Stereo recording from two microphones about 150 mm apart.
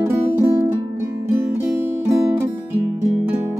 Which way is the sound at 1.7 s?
15° right (ahead or behind).